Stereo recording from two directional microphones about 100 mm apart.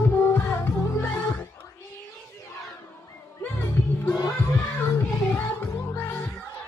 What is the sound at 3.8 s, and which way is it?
Music, 25° left (ahead or behind).